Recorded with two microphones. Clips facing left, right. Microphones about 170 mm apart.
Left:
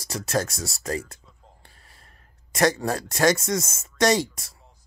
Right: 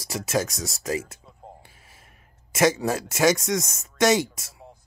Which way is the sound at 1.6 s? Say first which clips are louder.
Right 3 dB; 5° right (ahead or behind).